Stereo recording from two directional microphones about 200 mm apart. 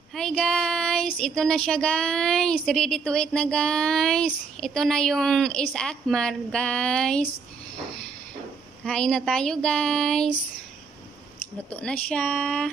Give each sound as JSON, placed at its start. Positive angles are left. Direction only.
{"t": 0.1, "sound": "speech", "side_deg": 5}
{"t": 8.8, "sound": "speech", "side_deg": 5}
{"t": 11.7, "sound": "speech", "side_deg": 5}